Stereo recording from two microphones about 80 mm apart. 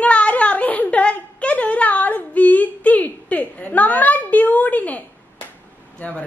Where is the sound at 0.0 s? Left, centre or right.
Centre.